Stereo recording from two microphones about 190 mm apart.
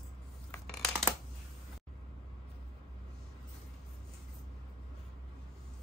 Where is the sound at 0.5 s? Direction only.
5° left (ahead or behind).